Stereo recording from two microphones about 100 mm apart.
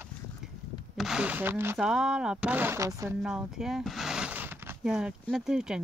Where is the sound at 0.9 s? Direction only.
5° right (ahead or behind); by 1.8 s 20° right (ahead or behind).